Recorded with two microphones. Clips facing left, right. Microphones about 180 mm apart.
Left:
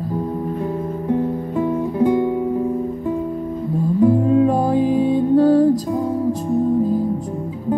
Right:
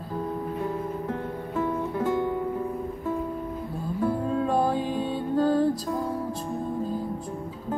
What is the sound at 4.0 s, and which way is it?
Music, 15° left (ahead or behind).